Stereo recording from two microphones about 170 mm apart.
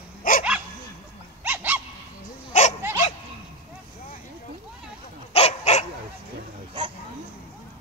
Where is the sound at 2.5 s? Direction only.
45° left (ahead or behind).